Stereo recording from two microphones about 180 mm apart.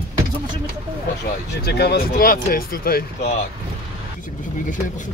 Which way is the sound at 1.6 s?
65° left (ahead or behind).